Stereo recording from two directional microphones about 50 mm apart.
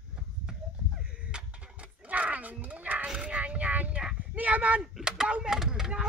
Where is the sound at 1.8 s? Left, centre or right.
Right.